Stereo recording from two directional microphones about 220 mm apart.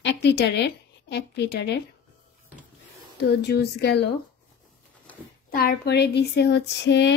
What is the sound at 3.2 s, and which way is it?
Speech, 50° left (ahead or behind).